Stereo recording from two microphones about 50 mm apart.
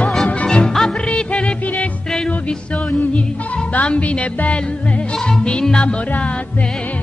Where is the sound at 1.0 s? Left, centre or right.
Left.